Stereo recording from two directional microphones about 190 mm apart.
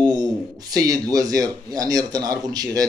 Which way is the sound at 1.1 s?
20° right (ahead or behind).